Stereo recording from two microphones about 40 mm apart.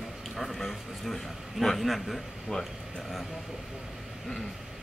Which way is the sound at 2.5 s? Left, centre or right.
Centre.